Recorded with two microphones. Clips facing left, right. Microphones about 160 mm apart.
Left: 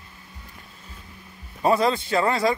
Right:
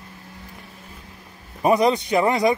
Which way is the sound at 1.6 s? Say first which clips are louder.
Right 3 dB; 20° right (ahead or behind).